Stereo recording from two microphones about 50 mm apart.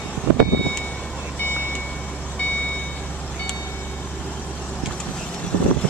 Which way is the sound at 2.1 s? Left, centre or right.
Left.